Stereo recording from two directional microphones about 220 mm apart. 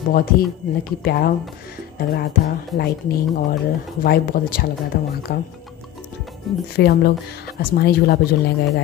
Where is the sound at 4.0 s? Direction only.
45° left (ahead or behind).